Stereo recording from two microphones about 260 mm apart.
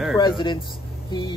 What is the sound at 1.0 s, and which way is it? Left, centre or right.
Speech, centre.